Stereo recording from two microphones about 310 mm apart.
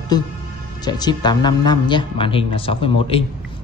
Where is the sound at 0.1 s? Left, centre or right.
Centre.